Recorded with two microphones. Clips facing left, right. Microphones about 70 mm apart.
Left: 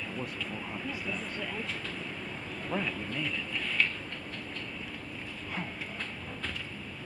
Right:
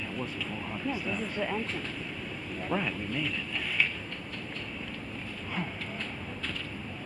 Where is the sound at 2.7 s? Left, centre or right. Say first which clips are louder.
Right 2 dB; right.